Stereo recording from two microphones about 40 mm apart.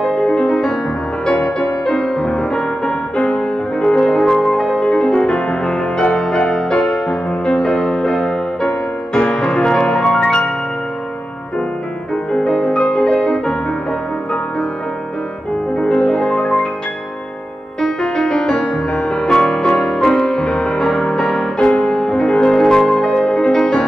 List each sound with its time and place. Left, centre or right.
0.0 s music: centre
12.3 s music: left
16.0 s music: centre
17.8 s music: centre